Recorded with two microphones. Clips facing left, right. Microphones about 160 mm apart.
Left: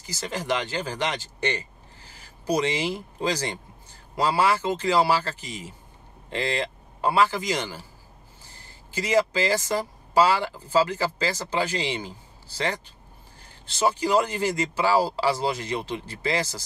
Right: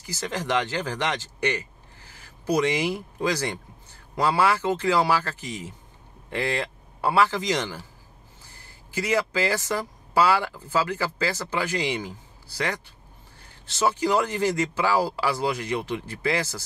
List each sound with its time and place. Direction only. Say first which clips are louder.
0.0 s speech: right 1 dB; 15° left (ahead or behind)
2.1 s a sound: right 1 dB; 20° left (ahead or behind)
2.7 s speech: right 2 dB; 15° right (ahead or behind)
3.2 s speech: right 1 dB; 20° left (ahead or behind)
9.1 s speech: left 3 dB; 15° left (ahead or behind)